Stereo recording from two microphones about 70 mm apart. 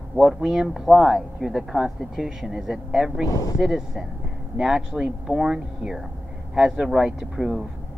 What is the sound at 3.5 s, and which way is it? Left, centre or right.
Speech, centre.